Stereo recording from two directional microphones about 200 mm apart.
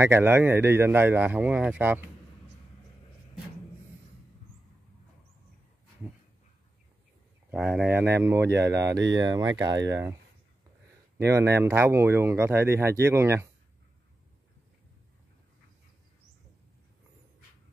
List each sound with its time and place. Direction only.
0.0 s speech: 10° right (ahead or behind)
7.5 s speech: 5° right (ahead or behind)
11.1 s speech: 15° right (ahead or behind)